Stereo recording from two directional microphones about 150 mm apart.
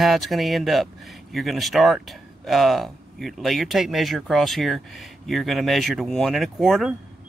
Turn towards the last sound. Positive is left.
turn(degrees=0)  # may be behind; listen again after turning